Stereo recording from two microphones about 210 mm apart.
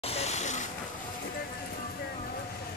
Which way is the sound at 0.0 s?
30° left (ahead or behind).